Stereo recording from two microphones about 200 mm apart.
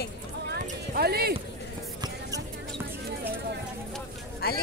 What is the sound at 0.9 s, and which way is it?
Clip-clop, 50° right (ahead or behind).